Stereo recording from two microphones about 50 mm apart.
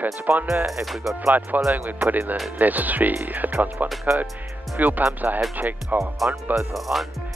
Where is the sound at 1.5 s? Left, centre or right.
Right.